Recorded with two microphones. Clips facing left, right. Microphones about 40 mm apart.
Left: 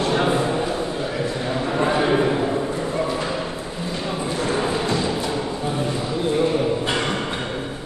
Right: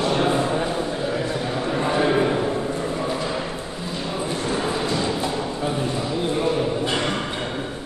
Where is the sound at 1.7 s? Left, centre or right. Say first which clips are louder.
Left 2 dB; centre.